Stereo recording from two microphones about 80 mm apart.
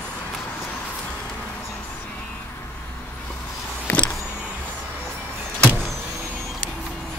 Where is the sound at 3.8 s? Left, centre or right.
Centre.